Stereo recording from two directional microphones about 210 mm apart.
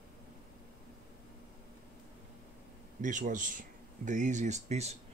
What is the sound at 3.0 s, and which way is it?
Speech, 40° right (ahead or behind).